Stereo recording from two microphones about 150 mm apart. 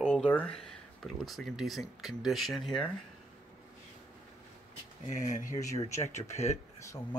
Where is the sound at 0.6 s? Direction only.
Centre (ahead or behind).